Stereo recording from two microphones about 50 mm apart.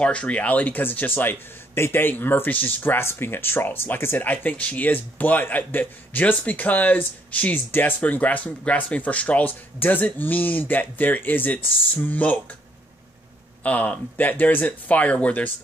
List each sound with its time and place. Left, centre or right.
0.0 s speech: left
3.0 s speech: left
13.6 s speech: left